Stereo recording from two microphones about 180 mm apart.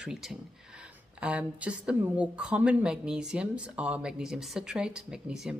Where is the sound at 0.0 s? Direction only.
Centre (ahead or behind).